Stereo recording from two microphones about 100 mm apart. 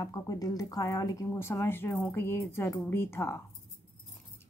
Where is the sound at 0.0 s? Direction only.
35° left (ahead or behind).